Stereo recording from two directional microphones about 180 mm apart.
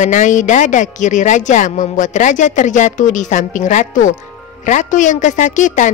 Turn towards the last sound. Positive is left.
turn(degrees=45)  # may be behind; listen again after turning